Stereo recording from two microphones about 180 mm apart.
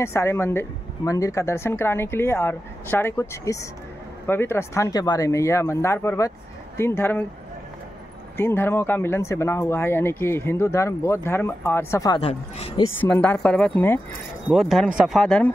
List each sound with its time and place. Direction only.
0.0 s speech: 15° left (ahead or behind)
8.4 s speech: 10° left (ahead or behind)
12.2 s speech: 35° left (ahead or behind)
13.0 s speech: 10° left (ahead or behind)
14.5 s speech: centre (ahead or behind)